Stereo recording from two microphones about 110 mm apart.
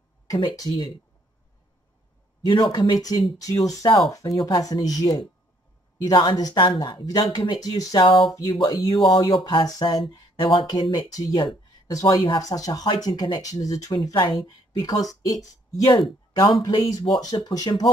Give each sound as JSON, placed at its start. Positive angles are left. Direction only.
{"t": 0.6, "sound": "speech", "side_deg": 40}
{"t": 2.4, "sound": "speech", "side_deg": 40}
{"t": 8.0, "sound": "speech", "side_deg": 45}
{"t": 14.1, "sound": "speech", "side_deg": 45}